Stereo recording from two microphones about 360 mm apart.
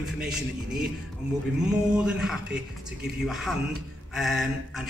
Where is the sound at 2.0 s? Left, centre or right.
Centre.